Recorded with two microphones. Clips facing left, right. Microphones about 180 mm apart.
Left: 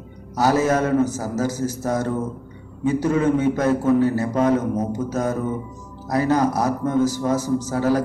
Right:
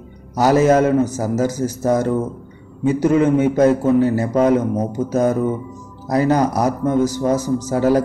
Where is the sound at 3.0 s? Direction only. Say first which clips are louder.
Right 5 dB; 20° right (ahead or behind).